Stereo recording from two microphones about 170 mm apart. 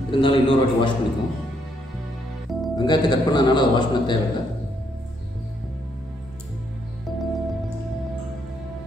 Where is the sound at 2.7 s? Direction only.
25° left (ahead or behind).